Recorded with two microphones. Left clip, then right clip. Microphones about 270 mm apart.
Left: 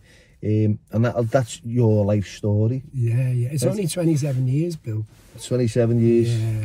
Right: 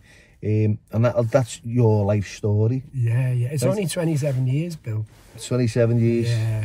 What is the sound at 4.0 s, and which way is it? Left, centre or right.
Speech, centre.